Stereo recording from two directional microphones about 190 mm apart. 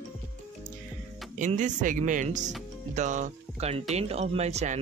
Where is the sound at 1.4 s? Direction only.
40° right (ahead or behind).